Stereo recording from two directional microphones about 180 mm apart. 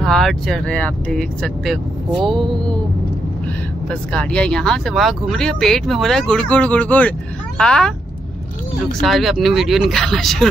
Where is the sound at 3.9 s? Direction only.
5° left (ahead or behind).